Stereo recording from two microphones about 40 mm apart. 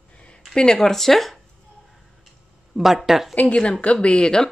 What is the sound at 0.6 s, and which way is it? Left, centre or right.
Speech, centre.